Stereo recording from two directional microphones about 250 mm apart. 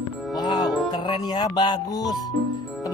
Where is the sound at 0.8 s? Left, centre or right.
Centre.